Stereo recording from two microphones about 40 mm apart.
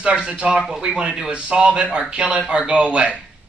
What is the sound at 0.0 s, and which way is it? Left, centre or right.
Speech, right.